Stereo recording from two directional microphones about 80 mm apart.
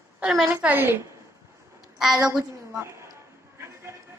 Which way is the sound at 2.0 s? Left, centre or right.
Centre.